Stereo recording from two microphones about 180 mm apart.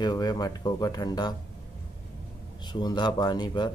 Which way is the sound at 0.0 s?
20° left (ahead or behind).